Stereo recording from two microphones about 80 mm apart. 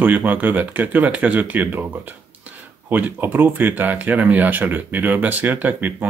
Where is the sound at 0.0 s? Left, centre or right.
Right.